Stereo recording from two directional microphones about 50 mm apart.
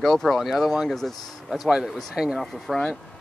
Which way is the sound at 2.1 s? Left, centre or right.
Centre.